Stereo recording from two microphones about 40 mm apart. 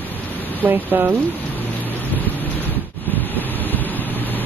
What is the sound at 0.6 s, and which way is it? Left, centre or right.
Speech, right.